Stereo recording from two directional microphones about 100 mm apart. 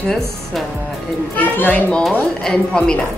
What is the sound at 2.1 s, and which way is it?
Speech, 5° left (ahead or behind).